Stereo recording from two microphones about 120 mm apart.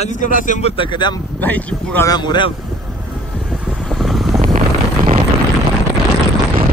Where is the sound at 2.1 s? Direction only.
40° left (ahead or behind).